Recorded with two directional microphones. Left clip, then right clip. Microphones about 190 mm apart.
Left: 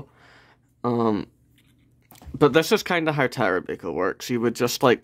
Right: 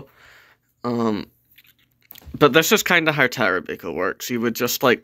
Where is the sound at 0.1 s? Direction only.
15° left (ahead or behind).